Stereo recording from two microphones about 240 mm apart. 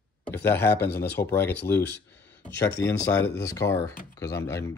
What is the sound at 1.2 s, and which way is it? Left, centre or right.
Speech, centre.